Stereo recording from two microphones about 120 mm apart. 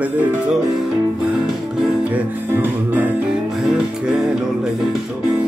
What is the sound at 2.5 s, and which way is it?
Music, 15° right (ahead or behind).